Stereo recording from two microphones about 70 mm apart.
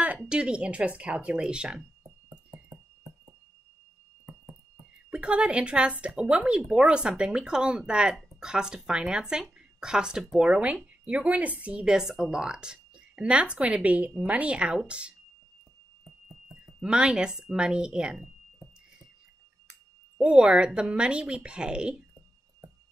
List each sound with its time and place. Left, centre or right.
0.3 s speech: centre
5.1 s speech: centre
16.8 s speech: centre
20.2 s speech: centre